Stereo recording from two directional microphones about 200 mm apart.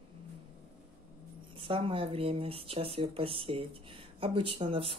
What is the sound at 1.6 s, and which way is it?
Speech, 25° right (ahead or behind).